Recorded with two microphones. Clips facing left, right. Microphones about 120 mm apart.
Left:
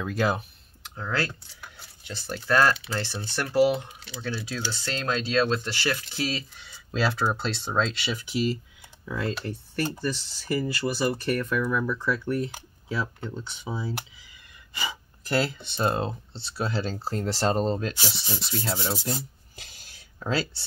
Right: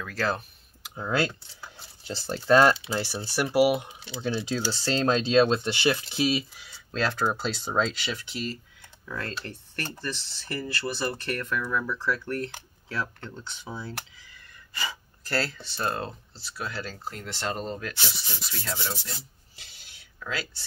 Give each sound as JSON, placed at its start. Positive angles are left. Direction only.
{"t": 0.0, "sound": "speech", "side_deg": 15}
{"t": 0.9, "sound": "speech", "side_deg": -20}
{"t": 6.5, "sound": "speech", "side_deg": 0}